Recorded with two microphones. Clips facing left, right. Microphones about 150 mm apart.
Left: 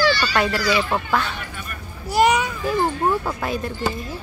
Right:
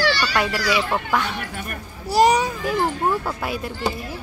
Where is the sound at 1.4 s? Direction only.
65° right (ahead or behind).